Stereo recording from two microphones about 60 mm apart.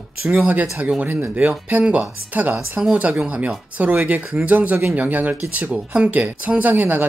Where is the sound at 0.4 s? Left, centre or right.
Right.